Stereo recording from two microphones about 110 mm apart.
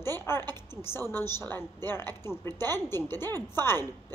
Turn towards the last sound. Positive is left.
turn(degrees=20)  # may be behind; listen again after turning